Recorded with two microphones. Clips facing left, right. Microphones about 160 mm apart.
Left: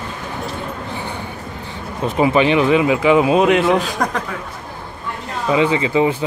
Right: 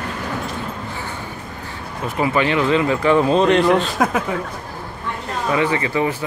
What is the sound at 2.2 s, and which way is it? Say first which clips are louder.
Speech: left 4 dB; 20° left (ahead or behind).